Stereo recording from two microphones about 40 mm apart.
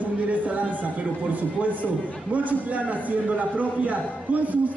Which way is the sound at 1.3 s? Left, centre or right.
Right.